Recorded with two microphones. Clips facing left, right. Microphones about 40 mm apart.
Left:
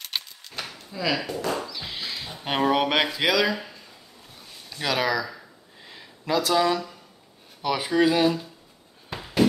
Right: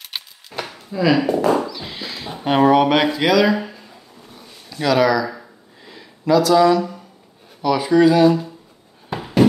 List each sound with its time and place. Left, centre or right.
0.0 s keys jangling: centre
1.3 s speech: right
1.7 s speech: centre
3.5 s a sound: centre
4.8 s speech: centre
6.2 s speech: centre
9.1 s a sound: centre